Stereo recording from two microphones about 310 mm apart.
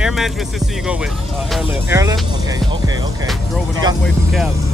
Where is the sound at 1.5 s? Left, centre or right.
Centre.